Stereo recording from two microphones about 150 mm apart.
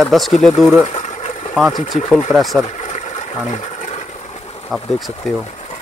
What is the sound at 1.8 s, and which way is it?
Speech, 55° left (ahead or behind).